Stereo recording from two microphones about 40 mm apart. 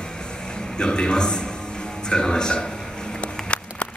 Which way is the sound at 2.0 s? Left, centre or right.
Centre.